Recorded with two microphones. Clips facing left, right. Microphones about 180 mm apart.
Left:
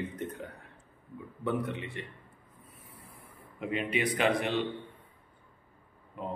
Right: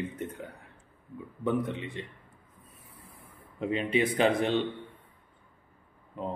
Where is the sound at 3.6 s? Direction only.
30° right (ahead or behind).